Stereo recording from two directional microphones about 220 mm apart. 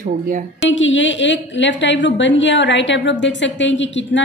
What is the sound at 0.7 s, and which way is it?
A woman's voice, 60° left (ahead or behind).